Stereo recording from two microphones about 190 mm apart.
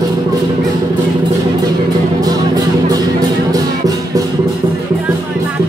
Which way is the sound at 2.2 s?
20° right (ahead or behind).